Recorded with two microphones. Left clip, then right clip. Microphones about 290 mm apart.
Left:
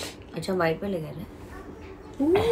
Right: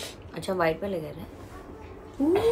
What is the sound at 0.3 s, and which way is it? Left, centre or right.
Speech, centre.